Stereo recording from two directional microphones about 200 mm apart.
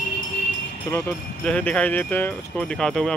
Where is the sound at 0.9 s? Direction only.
15° left (ahead or behind).